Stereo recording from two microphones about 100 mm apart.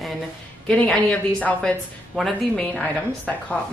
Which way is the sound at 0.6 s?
10° left (ahead or behind).